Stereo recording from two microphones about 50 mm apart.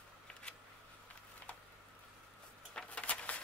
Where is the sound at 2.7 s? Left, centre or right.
Left.